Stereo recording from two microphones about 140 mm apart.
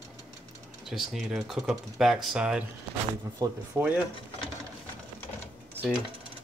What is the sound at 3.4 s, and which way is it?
Speech, 25° right (ahead or behind).